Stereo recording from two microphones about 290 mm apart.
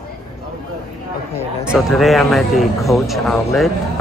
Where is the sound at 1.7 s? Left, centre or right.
Centre.